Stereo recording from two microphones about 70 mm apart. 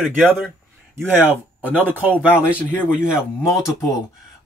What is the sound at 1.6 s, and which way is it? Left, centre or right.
Speech, right.